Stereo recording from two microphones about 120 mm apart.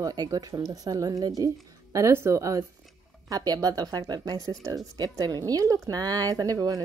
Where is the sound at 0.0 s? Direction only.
35° right (ahead or behind).